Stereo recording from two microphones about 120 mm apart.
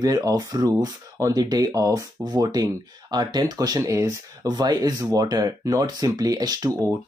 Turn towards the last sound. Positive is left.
turn(degrees=-35)  # may be behind; listen again after turning